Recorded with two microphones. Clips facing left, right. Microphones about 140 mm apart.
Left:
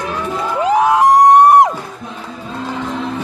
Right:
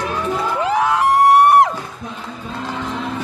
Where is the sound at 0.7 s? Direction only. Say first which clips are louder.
Left 6 dB; 15° left (ahead or behind).